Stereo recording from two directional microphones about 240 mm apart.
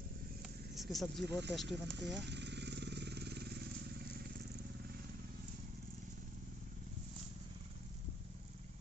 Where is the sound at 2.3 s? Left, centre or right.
Right.